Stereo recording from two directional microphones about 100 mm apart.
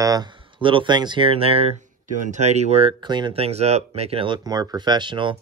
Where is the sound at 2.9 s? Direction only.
50° right (ahead or behind).